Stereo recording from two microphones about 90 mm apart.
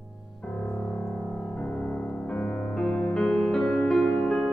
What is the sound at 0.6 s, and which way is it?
Music, 15° left (ahead or behind).